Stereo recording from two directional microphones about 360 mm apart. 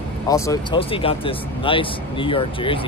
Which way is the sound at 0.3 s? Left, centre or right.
Centre.